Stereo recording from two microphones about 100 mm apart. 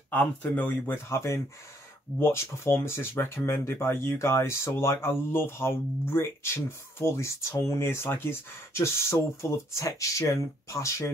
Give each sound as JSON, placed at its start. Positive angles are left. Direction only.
{"t": 0.1, "sound": "speech", "side_deg": 20}